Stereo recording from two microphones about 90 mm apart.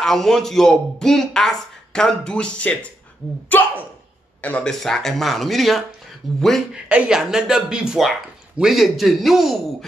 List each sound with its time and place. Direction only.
0.0 s speech: 5° left (ahead or behind)
4.6 s speech: 5° left (ahead or behind)